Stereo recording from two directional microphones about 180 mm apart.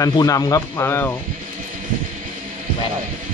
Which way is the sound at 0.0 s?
20° left (ahead or behind).